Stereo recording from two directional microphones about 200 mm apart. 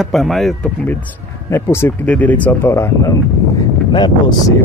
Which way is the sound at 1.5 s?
15° left (ahead or behind).